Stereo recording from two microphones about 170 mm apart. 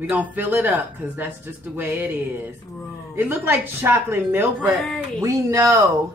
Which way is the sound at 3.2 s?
10° right (ahead or behind).